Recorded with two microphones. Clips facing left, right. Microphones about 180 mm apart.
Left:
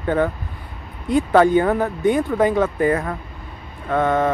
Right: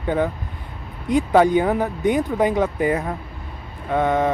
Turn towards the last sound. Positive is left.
turn(degrees=-15)  # may be behind; listen again after turning